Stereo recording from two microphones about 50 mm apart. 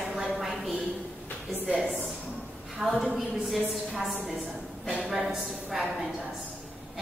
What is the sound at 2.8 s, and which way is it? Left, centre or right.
Speech, centre.